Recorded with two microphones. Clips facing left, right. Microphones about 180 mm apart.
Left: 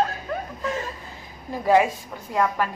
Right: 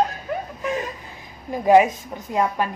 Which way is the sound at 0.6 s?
15° right (ahead or behind).